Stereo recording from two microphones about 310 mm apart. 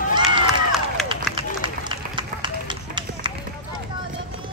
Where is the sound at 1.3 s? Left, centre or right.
Centre.